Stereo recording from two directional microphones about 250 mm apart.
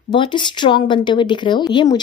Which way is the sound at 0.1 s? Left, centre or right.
Centre.